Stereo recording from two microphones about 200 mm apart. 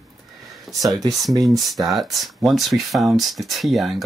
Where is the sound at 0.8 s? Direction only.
20° right (ahead or behind).